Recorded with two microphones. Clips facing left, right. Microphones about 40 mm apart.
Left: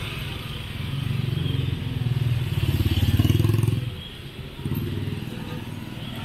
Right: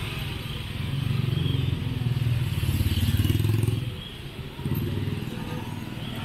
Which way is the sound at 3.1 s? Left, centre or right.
Left.